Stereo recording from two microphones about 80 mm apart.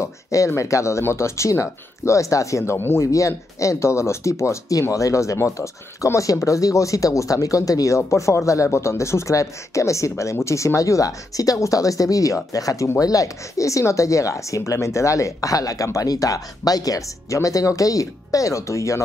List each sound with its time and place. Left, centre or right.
0.0 s speech: left